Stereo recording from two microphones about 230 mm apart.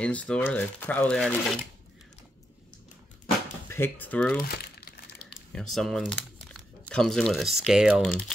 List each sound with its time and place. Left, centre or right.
0.0 s speech: centre
3.6 s speech: centre
4.4 s crumpling: left
5.3 s speech: centre